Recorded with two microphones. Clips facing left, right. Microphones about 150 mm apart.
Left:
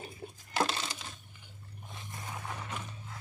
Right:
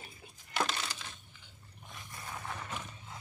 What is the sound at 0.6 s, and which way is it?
Crushing, 25° left (ahead or behind).